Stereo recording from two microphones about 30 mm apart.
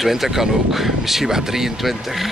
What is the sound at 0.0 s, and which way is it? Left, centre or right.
Speech, centre.